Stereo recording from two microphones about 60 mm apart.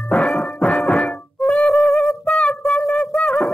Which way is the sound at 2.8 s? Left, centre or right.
Centre.